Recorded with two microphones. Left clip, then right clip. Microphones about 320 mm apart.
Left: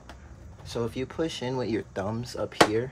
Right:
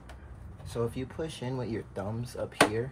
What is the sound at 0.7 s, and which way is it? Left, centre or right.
Speech, left.